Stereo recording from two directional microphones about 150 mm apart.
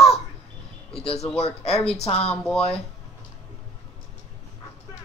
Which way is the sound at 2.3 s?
5° left (ahead or behind).